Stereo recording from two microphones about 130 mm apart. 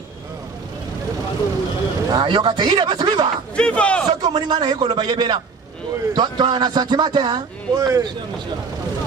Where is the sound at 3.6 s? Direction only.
10° left (ahead or behind).